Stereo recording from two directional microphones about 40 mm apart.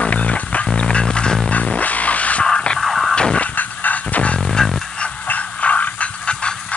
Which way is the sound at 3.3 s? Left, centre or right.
Left.